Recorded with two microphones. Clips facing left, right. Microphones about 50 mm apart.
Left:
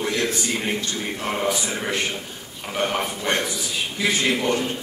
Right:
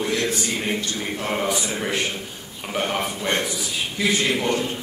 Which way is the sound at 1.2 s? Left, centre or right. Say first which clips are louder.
Even; centre.